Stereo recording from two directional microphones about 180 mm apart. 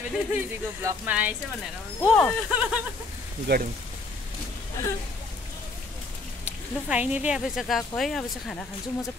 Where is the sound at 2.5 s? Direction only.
5° right (ahead or behind).